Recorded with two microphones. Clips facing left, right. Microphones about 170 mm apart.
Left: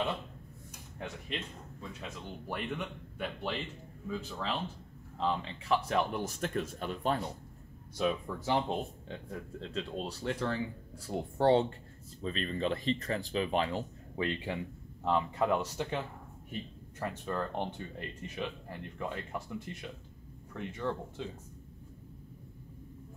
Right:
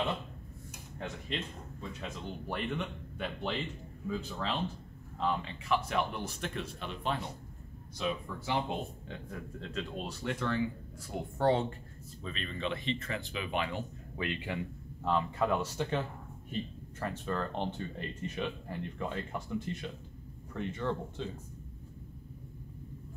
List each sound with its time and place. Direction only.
0.9 s speech: 5° left (ahead or behind)
5.2 s speech: 35° left (ahead or behind); by 16.0 s 15° left (ahead or behind)
17.0 s speech: 15° left (ahead or behind)